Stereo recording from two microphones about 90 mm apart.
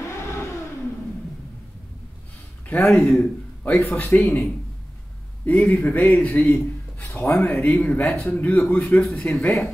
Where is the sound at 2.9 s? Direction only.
Centre (ahead or behind).